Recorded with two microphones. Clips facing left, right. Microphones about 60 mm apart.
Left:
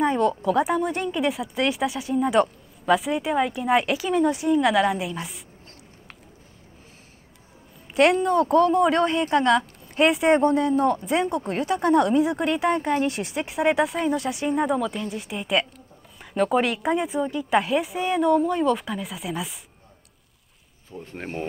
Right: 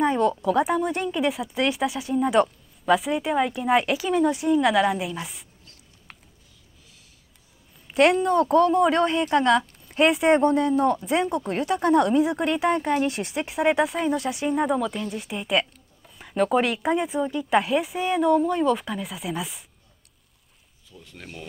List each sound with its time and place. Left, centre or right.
0.0 s a woman's voice: centre
7.9 s a woman's voice: centre
20.9 s speech: left